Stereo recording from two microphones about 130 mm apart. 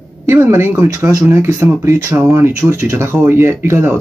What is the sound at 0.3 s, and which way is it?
Speech, 20° right (ahead or behind).